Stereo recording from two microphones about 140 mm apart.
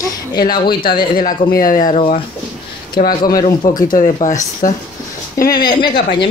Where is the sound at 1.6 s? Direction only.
75° left (ahead or behind).